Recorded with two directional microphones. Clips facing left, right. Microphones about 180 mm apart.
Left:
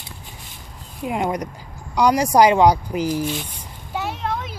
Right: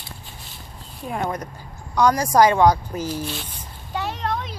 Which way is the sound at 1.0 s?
15° left (ahead or behind).